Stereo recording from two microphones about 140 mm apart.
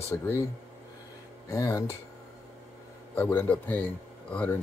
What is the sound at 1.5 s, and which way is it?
Speech, 20° left (ahead or behind).